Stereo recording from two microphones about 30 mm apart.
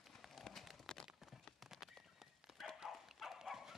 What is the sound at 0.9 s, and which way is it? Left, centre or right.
Clip-clop, left.